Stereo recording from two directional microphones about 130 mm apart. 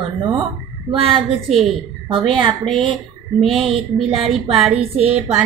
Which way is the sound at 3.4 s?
Centre (ahead or behind).